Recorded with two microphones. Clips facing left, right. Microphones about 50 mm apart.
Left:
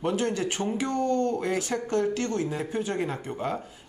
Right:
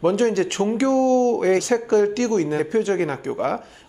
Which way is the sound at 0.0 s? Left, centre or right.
Right.